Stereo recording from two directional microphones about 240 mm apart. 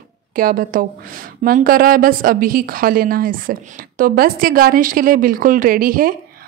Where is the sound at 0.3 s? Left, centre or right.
Right.